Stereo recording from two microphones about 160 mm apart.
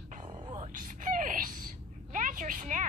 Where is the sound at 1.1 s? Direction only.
55° right (ahead or behind).